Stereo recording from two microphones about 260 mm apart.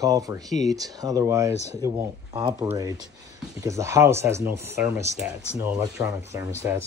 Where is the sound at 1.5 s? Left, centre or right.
Left.